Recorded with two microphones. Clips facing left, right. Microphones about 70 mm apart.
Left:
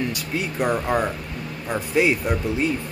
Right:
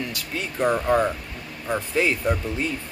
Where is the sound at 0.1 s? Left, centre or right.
Centre.